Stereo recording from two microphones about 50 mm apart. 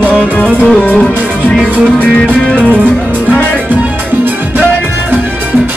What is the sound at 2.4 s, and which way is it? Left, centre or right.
Music, centre.